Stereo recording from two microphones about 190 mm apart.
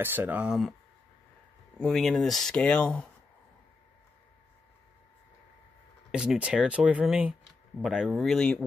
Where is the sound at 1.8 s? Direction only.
Centre (ahead or behind).